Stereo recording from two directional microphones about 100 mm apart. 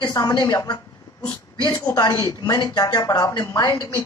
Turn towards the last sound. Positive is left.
turn(degrees=45)  # may be behind; listen again after turning